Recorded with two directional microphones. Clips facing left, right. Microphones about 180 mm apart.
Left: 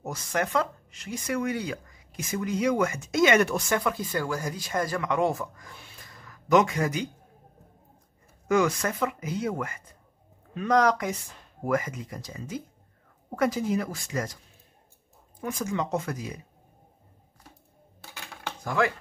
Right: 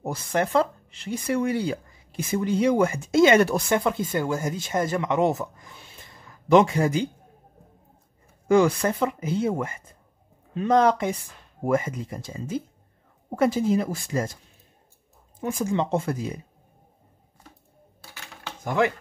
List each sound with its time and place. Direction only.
0.0 s speech: 30° right (ahead or behind)
8.5 s speech: 30° right (ahead or behind)
15.4 s speech: 25° right (ahead or behind)
18.6 s speech: 20° right (ahead or behind)